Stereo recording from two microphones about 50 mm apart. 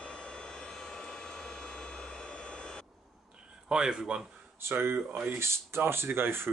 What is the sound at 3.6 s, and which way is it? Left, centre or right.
Speech, centre.